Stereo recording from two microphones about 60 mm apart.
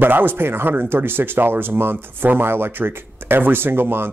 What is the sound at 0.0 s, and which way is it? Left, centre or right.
Speech, right.